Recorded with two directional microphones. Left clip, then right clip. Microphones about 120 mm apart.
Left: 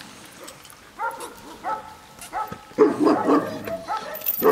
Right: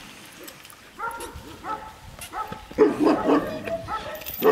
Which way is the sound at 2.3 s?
55° left (ahead or behind).